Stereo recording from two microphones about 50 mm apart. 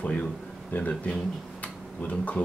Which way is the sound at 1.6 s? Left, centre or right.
Left.